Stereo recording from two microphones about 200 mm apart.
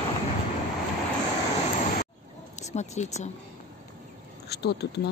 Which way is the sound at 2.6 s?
35° left (ahead or behind).